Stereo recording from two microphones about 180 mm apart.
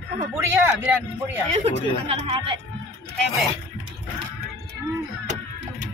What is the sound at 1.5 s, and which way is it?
Speech, 35° right (ahead or behind).